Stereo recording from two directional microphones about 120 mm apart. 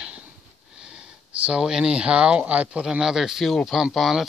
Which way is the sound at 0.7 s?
5° right (ahead or behind).